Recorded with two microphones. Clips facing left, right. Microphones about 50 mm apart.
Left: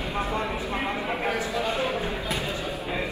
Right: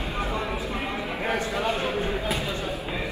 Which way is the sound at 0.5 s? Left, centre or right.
Left.